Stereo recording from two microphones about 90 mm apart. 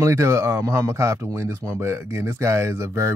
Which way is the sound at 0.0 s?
30° right (ahead or behind).